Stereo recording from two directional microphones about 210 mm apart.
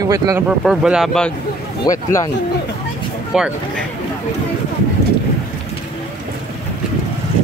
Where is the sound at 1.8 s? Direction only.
15° left (ahead or behind).